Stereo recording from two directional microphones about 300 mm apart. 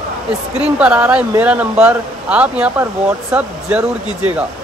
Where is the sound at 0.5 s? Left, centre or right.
Centre.